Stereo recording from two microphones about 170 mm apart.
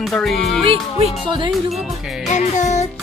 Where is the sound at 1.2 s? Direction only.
30° right (ahead or behind).